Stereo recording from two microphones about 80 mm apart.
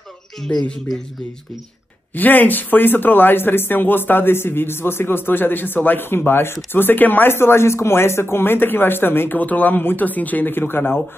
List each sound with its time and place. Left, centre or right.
0.5 s speech: centre
2.1 s speech: left